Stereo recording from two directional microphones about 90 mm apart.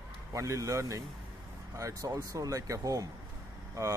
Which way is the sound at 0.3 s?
35° right (ahead or behind).